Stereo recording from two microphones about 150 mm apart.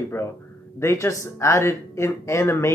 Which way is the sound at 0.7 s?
20° left (ahead or behind).